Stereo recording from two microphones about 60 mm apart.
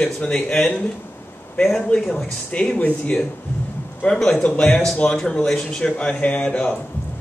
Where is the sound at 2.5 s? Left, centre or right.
Left.